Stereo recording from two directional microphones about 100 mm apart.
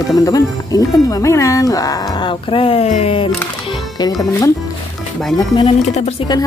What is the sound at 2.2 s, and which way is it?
Speech, 65° left (ahead or behind).